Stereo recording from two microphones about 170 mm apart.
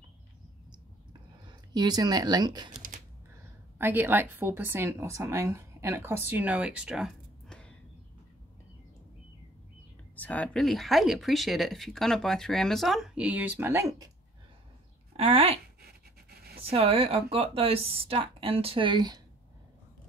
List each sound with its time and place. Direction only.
1.7 s speech: 25° right (ahead or behind)
3.7 s speech: 10° right (ahead or behind); by 7.7 s 5° left (ahead or behind)
10.1 s speech: 10° left (ahead or behind); by 14.1 s 20° right (ahead or behind)
15.1 s speech: 35° right (ahead or behind)
15.8 s a sound: 65° right (ahead or behind)
16.7 s speech: 35° right (ahead or behind)